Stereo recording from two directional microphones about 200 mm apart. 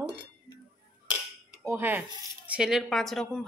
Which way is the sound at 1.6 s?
10° right (ahead or behind).